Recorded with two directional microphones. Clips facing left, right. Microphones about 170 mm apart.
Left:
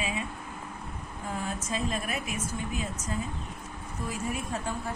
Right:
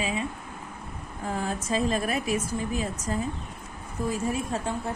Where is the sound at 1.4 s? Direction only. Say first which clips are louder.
Right 6 dB; 35° right (ahead or behind).